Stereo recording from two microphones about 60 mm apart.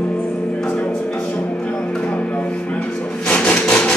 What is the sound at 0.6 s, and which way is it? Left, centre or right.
Music, centre.